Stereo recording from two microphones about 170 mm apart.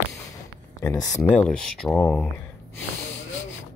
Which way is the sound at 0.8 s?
20° left (ahead or behind).